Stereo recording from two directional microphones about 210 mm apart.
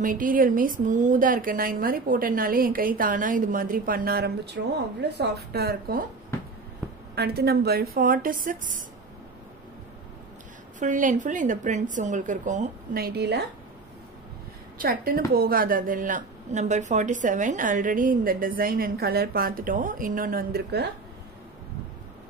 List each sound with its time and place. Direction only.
0.0 s a woman's voice: 40° right (ahead or behind)
7.2 s a woman's voice: 50° right (ahead or behind)
10.8 s a woman's voice: 35° right (ahead or behind)
14.8 s a woman's voice: 45° right (ahead or behind)